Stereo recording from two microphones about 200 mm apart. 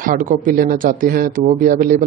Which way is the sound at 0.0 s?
40° right (ahead or behind).